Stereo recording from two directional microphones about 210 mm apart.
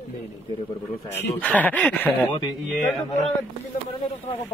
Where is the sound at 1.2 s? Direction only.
5° left (ahead or behind).